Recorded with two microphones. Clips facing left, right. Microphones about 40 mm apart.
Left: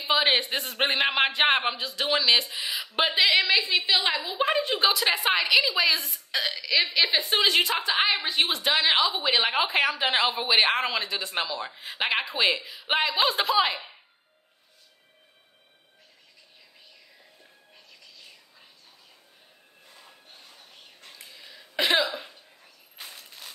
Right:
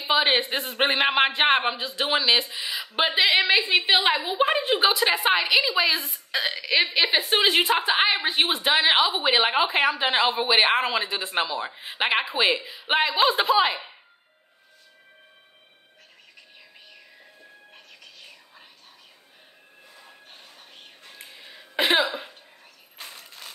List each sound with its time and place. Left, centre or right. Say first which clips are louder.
0.0 s a sound: right 2 dB; centre
0.4 s a man's voice: right 3 dB; centre
1.9 s a man's voice: even; right
2.5 s a man's voice: even; centre
3.3 s a woman's voice: right 2 dB; right
4.9 s a woman's voice: right 3 dB; centre
17.7 s music: right 1 dB; right
20.2 s music: right 3 dB; right
21.2 s cough: right 4 dB; right
23.0 s a sound: right 2 dB; centre